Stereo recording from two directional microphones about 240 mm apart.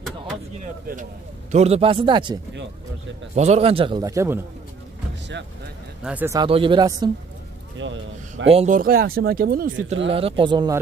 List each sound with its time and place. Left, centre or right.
0.7 s a man's voice: right
3.3 s a man's voice: right; by 4.4 s centre
6.0 s speech: centre
7.8 s speech: right
8.5 s speech: right
10.1 s a man's voice: right